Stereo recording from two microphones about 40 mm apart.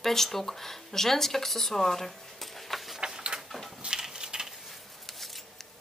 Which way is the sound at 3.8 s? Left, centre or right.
Right.